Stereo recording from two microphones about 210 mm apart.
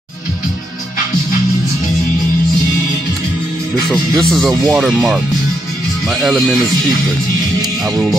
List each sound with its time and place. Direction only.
3.9 s speech: centre (ahead or behind)